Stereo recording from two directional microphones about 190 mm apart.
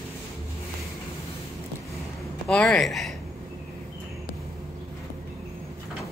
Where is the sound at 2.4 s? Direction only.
5° left (ahead or behind).